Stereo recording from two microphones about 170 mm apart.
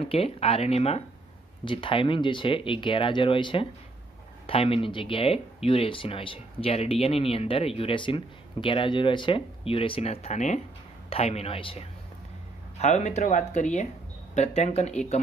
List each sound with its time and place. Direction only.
0.0 s speech: 35° left (ahead or behind)